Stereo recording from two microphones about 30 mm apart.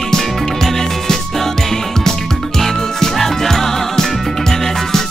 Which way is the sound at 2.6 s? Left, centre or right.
Centre.